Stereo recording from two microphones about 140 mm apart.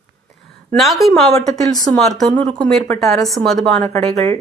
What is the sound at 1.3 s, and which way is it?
Speech, 25° left (ahead or behind).